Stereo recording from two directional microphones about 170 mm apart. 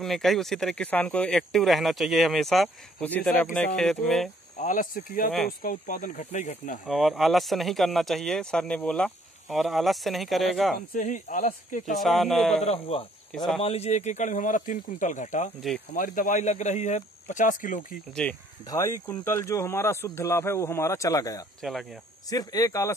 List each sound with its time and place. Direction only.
0.0 s speech: centre (ahead or behind)
4.6 s speech: 50° left (ahead or behind)
6.9 s speech: centre (ahead or behind)
10.9 s speech: 50° left (ahead or behind)
12.0 s speech: centre (ahead or behind)
12.6 s speech: 35° left (ahead or behind)
18.2 s speech: 5° left (ahead or behind)
18.7 s speech: 15° left (ahead or behind)
21.5 s speech: centre (ahead or behind)
22.3 s speech: 20° left (ahead or behind)